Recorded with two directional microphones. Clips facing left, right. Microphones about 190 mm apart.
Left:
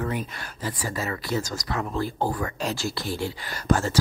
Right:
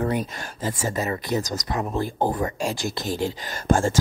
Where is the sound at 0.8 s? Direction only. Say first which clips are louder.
Right 4 dB; 20° right (ahead or behind).